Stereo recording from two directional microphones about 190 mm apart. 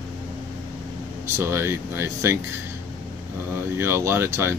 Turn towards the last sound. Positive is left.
turn(degrees=-15)  # may be behind; listen again after turning